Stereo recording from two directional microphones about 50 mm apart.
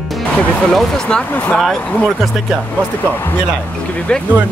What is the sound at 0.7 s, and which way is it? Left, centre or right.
Speech, centre.